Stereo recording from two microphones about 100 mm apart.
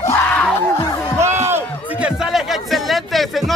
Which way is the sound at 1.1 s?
25° right (ahead or behind).